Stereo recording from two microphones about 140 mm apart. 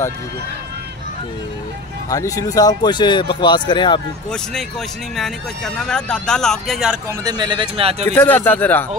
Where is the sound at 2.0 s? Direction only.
25° left (ahead or behind).